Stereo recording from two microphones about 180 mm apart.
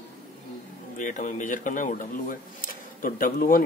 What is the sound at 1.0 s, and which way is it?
Speech, 45° left (ahead or behind).